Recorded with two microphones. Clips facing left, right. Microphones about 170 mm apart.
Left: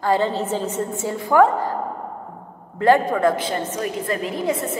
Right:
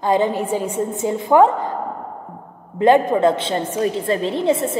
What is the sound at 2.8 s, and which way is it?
A woman's voice, 20° right (ahead or behind).